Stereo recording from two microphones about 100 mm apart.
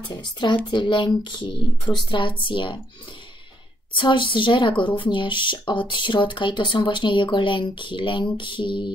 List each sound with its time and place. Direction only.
0.1 s a woman's voice: 50° left (ahead or behind)
3.9 s speech: 55° left (ahead or behind)